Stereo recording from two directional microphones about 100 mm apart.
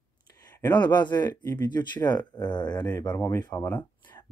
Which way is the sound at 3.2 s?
25° left (ahead or behind).